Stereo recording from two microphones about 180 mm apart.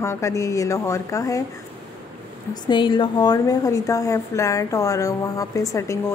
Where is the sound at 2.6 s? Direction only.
25° left (ahead or behind).